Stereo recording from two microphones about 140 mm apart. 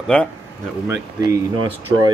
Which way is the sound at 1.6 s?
35° right (ahead or behind).